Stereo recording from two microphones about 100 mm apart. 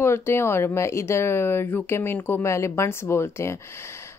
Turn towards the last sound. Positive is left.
turn(degrees=25)  # may be behind; listen again after turning